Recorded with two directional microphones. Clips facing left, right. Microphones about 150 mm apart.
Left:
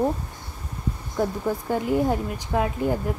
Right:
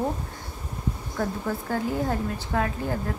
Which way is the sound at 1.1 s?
15° left (ahead or behind).